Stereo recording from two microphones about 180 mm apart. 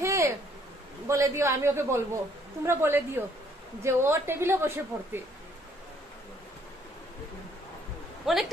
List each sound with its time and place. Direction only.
0.0 s a sound: 15° right (ahead or behind)
1.0 s a woman's voice: 15° right (ahead or behind)
8.3 s a woman's voice: centre (ahead or behind)